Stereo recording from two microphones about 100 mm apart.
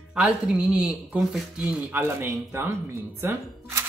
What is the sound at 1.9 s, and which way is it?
Speech, 20° right (ahead or behind).